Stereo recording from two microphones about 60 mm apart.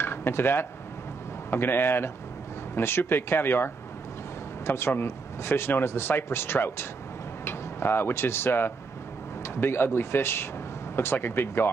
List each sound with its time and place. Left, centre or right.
0.0 s speech: left